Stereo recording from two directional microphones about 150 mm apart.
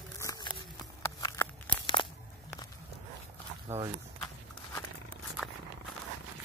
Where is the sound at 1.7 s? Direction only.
35° left (ahead or behind).